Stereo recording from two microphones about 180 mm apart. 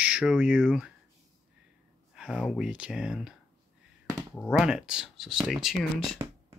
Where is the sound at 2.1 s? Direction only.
5° right (ahead or behind).